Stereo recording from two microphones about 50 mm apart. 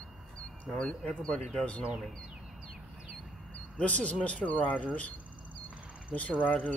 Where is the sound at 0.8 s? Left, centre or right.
Left.